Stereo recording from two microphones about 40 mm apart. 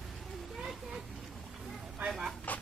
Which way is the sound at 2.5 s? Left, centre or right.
Left.